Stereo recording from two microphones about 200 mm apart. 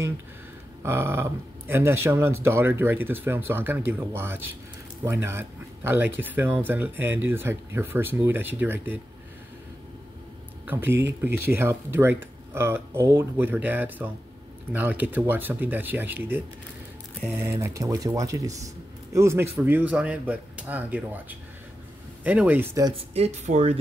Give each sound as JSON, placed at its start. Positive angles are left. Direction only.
{"t": 0.8, "sound": "speech", "side_deg": -10}
{"t": 10.6, "sound": "speech", "side_deg": -10}
{"t": 22.8, "sound": "speech", "side_deg": -30}